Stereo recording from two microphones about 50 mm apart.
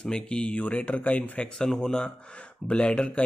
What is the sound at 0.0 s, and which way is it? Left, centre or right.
Speech, centre.